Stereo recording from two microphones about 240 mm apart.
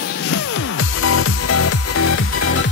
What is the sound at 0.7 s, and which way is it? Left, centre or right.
Music, left.